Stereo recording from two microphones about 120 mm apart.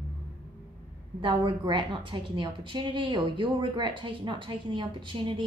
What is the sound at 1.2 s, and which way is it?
A woman's voice, 40° right (ahead or behind).